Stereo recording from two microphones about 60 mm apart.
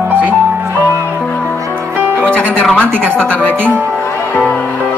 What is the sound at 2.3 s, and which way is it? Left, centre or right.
Music, left.